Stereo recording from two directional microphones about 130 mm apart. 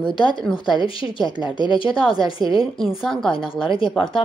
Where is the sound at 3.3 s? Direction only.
45° left (ahead or behind).